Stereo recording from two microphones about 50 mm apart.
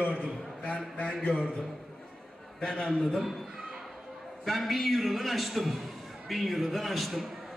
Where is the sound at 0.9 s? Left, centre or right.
Left.